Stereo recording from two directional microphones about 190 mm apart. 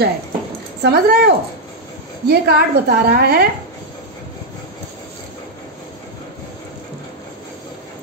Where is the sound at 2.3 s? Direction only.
55° right (ahead or behind).